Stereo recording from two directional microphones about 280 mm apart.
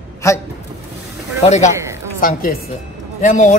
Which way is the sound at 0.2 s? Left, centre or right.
Centre.